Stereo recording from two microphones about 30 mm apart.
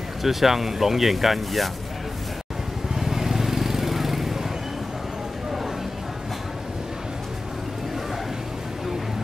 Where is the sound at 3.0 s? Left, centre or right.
Centre.